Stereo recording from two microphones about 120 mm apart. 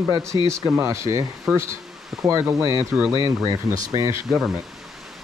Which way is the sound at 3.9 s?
30° right (ahead or behind).